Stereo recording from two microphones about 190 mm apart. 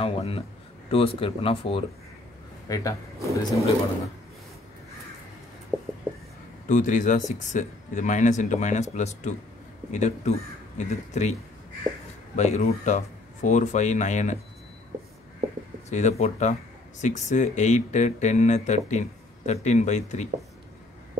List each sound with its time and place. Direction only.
0.0 s speech: 30° left (ahead or behind)
2.7 s speech: 15° left (ahead or behind)
3.2 s speech: 15° right (ahead or behind)
6.7 s speech: 40° left (ahead or behind)
12.4 s speech: 35° left (ahead or behind)
15.9 s speech: 35° left (ahead or behind)